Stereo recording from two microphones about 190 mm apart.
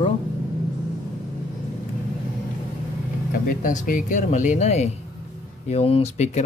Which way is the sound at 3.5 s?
45° left (ahead or behind).